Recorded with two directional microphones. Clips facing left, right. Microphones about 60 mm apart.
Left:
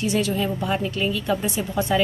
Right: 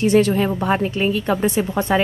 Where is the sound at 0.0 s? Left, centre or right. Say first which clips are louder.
Right 7 dB; right.